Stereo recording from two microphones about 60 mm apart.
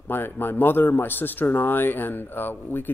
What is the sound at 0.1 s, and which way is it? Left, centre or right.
Speech, left.